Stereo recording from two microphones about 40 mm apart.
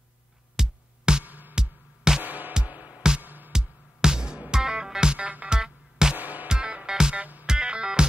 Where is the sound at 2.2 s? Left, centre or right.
Right.